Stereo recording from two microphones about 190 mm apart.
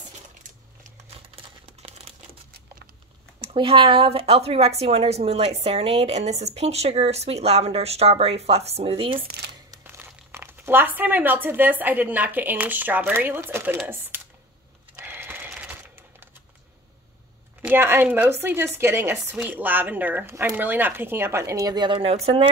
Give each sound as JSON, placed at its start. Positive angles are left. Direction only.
{"t": 1.3, "sound": "a sound", "side_deg": -30}
{"t": 3.3, "sound": "speech", "side_deg": -30}
{"t": 9.7, "sound": "speech", "side_deg": -10}
{"t": 15.0, "sound": "sheep", "side_deg": -10}
{"t": 17.6, "sound": "a woman's voice", "side_deg": -10}